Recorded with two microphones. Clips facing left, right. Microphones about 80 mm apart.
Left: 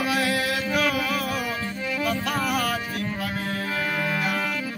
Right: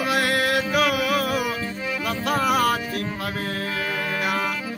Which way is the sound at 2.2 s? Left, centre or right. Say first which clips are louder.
Right 5 dB; right.